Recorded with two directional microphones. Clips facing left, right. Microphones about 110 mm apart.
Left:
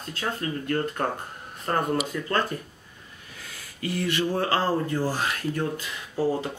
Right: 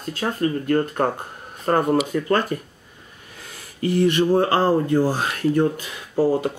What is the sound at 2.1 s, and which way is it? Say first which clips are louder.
Speech: right 8 dB; 50° right (ahead or behind).